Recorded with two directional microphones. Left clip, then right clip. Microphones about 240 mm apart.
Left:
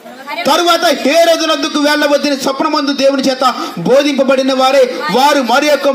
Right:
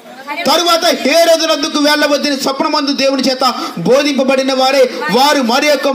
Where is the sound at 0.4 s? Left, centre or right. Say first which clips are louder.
Left 1 dB; centre.